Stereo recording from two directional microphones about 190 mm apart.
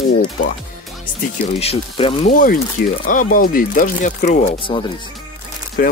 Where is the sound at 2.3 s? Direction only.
45° left (ahead or behind).